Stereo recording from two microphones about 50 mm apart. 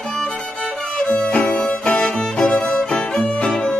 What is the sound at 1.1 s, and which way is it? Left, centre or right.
Music, left.